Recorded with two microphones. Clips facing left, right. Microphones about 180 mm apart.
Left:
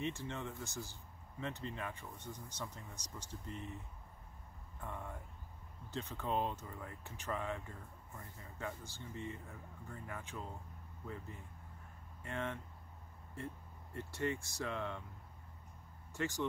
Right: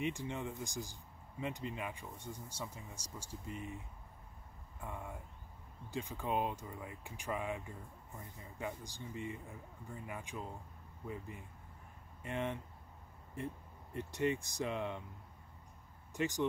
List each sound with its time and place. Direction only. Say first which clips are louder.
0.0 s speech: right 2 dB; 15° right (ahead or behind)
4.7 s speech: right 1 dB; 10° right (ahead or behind)
12.2 s speech: right 3 dB; 15° right (ahead or behind)
16.1 s speech: right 3 dB; 15° right (ahead or behind)